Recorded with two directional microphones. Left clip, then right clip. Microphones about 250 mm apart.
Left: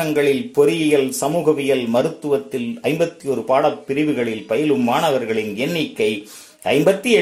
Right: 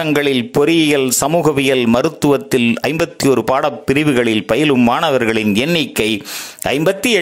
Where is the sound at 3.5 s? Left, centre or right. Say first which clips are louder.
Right 2 dB; right.